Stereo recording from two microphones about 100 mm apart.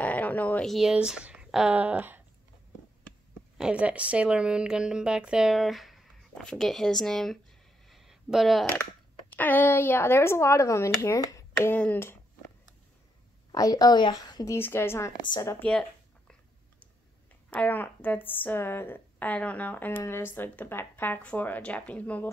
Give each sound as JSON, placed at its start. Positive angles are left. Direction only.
{"t": 0.0, "sound": "a sound", "side_deg": 15}
{"t": 0.7, "sound": "speech", "side_deg": -5}
{"t": 3.5, "sound": "a woman's voice", "side_deg": -10}
{"t": 7.9, "sound": "a sound", "side_deg": 0}
{"t": 9.3, "sound": "speech", "side_deg": 20}
{"t": 11.6, "sound": "speech", "side_deg": 20}
{"t": 13.5, "sound": "a woman's voice", "side_deg": 40}
{"t": 14.5, "sound": "speech", "side_deg": 25}
{"t": 15.7, "sound": "a sound", "side_deg": 10}
{"t": 17.5, "sound": "a woman's voice", "side_deg": 15}